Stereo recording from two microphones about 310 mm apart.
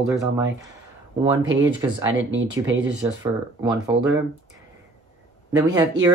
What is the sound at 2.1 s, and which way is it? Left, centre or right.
Speech, right.